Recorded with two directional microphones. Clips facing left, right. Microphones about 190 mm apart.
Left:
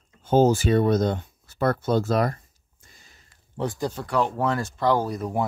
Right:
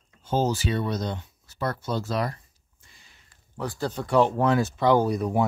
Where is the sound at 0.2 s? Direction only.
55° left (ahead or behind).